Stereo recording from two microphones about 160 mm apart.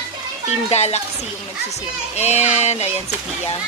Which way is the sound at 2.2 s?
45° left (ahead or behind).